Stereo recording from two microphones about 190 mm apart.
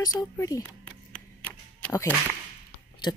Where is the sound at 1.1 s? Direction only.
5° left (ahead or behind).